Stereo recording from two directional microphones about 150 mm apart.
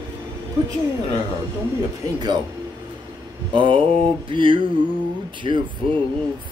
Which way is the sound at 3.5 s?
35° right (ahead or behind).